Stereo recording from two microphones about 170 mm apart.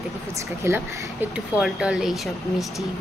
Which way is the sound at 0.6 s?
15° right (ahead or behind).